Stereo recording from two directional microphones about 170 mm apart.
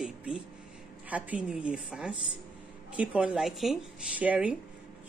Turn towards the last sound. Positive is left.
turn(degrees=-10)  # may be behind; listen again after turning